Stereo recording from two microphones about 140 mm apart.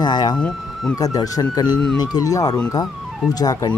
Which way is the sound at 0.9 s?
25° left (ahead or behind).